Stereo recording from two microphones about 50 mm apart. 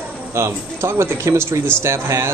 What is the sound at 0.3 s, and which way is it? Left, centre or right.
Speech, right.